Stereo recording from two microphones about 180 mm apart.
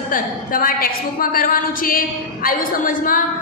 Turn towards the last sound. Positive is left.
turn(degrees=50)  # may be behind; listen again after turning